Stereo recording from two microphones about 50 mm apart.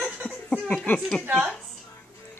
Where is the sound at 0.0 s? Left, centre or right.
Right.